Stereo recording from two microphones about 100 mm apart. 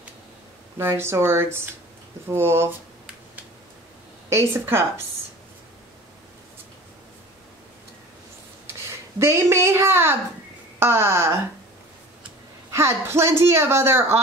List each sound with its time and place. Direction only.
0.7 s a woman's voice: 25° right (ahead or behind)
4.3 s a woman's voice: 25° right (ahead or behind)
9.2 s a woman's voice: 25° right (ahead or behind)
12.7 s a woman's voice: 25° right (ahead or behind)